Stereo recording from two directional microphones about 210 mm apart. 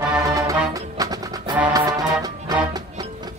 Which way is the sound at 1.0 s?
20° right (ahead or behind).